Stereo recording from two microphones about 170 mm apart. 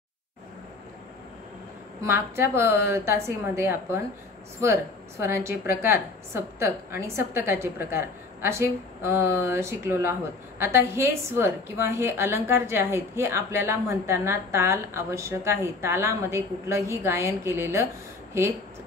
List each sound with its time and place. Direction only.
2.0 s a woman's voice: 15° right (ahead or behind)
5.2 s a woman's voice: 15° right (ahead or behind)